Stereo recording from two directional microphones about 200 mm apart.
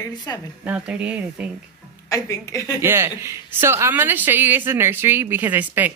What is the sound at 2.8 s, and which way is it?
A woman's voice, 10° right (ahead or behind).